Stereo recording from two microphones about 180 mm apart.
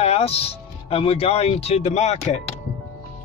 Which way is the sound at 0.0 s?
35° left (ahead or behind).